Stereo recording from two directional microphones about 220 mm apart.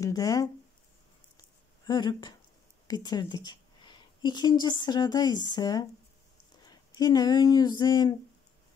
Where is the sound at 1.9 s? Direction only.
20° left (ahead or behind).